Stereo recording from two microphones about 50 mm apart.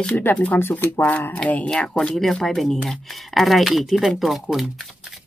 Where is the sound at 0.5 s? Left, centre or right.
Left.